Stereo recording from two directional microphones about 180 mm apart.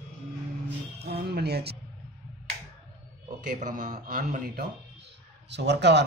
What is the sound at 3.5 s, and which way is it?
A man's voice, 50° right (ahead or behind).